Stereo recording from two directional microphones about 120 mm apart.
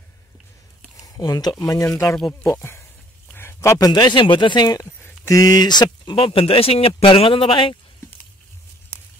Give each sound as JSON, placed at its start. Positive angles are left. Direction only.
{"t": 1.0, "sound": "a man's voice", "side_deg": 30}